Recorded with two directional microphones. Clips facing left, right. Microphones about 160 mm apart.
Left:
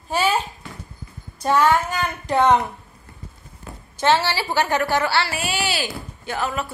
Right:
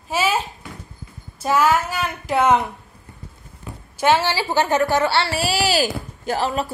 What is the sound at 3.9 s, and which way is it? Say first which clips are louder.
A woman's voice: right 1 dB; 10° right (ahead or behind).